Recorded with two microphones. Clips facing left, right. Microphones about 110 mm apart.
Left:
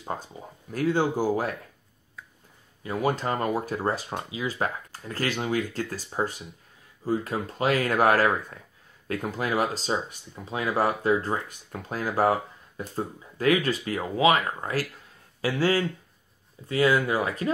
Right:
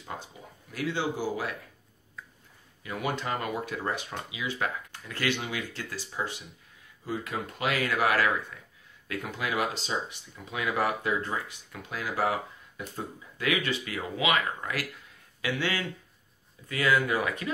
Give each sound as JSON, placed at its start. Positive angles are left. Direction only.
{"t": 0.0, "sound": "speech", "side_deg": 40}
{"t": 2.8, "sound": "speech", "side_deg": 35}